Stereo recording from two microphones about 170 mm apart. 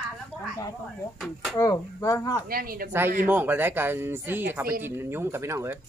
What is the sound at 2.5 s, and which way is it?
Speech, 60° right (ahead or behind).